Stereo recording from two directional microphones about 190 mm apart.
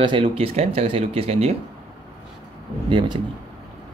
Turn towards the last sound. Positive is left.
turn(degrees=-25)  # may be behind; listen again after turning